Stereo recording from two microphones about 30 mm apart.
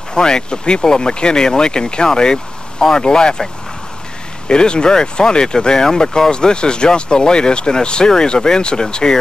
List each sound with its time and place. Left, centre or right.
0.1 s speech: left
4.5 s speech: left